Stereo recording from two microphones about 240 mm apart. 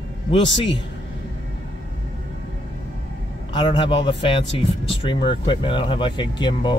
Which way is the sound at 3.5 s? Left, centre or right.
Left.